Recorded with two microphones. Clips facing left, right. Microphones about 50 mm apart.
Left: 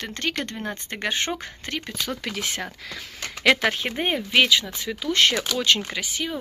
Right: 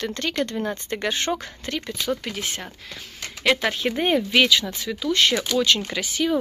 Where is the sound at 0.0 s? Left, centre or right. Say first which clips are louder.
Right 3 dB; left.